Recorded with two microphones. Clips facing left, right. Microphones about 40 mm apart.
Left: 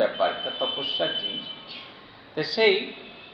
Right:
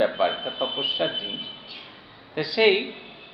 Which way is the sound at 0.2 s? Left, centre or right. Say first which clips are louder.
Right 1 dB; centre.